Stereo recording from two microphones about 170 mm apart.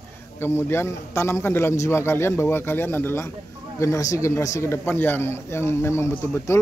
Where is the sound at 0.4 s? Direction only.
15° left (ahead or behind).